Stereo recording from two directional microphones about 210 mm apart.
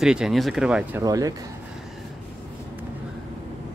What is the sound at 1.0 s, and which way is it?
Speech, 15° right (ahead or behind).